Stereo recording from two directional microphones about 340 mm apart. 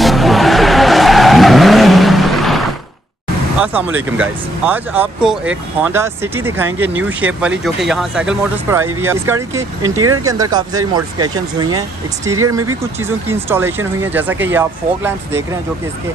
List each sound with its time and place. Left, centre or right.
0.0 s vehicle: centre
4.2 s speech: centre
9.9 s speech: right
10.2 s speech: centre
12.3 s speech: right
13.3 s speech: centre